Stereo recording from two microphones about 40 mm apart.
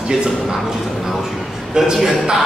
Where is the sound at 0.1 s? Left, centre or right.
Centre.